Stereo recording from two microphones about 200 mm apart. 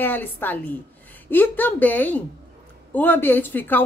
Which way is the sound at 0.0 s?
10° left (ahead or behind).